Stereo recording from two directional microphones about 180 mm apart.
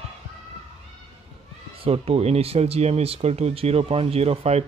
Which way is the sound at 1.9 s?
35° right (ahead or behind).